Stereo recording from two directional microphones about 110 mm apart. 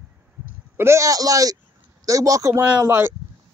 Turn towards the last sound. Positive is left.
turn(degrees=-20)  # may be behind; listen again after turning